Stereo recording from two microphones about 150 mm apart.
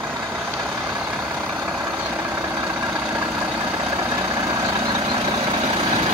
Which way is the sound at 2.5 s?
10° right (ahead or behind).